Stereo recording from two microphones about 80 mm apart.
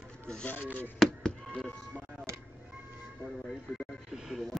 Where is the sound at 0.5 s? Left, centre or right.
Centre.